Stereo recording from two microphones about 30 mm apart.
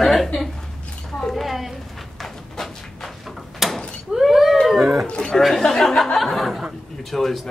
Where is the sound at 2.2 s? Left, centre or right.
Centre.